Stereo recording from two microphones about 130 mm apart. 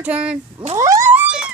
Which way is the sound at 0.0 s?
10° right (ahead or behind).